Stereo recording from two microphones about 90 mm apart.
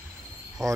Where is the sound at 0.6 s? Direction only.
40° right (ahead or behind).